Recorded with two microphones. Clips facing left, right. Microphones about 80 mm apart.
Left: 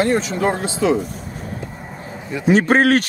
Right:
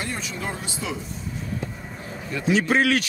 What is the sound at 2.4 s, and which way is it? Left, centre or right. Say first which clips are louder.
Speech: left 6 dB; left.